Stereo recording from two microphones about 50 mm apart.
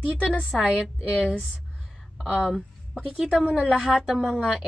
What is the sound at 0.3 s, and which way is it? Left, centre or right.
Speech, centre.